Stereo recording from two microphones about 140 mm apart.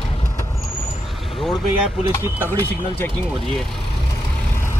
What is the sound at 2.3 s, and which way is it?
Speech, 15° right (ahead or behind).